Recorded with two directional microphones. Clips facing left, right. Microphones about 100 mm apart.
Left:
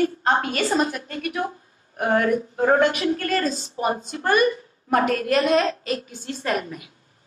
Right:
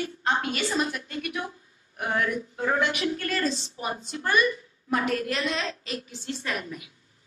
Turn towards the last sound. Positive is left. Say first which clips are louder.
# left 2 dB
turn(degrees=50)  # may be behind; listen again after turning